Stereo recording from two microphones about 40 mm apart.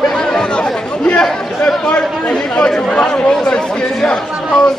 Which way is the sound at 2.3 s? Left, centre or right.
Centre.